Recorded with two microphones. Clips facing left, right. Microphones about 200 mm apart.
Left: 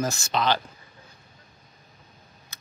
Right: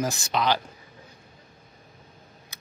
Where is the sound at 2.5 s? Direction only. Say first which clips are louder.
Right 1 dB; 15° right (ahead or behind).